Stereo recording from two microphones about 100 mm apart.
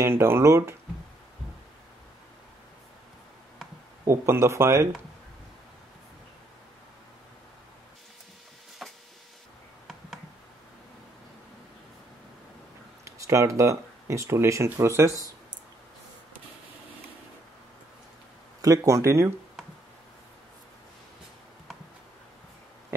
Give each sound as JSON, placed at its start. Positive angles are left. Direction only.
{"t": 0.0, "sound": "speech", "side_deg": -25}
{"t": 4.0, "sound": "speech", "side_deg": -25}
{"t": 8.8, "sound": "a sound", "side_deg": 0}
{"t": 13.0, "sound": "speech", "side_deg": -30}
{"t": 18.6, "sound": "speech", "side_deg": -35}